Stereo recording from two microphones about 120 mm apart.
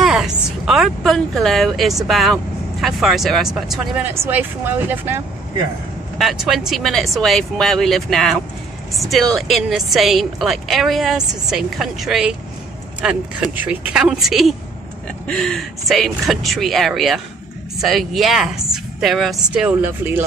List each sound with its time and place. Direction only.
0.0 s a woman's voice: 5° right (ahead or behind)
4.0 s speech: 20° right (ahead or behind)
6.1 s a woman's voice: centre (ahead or behind)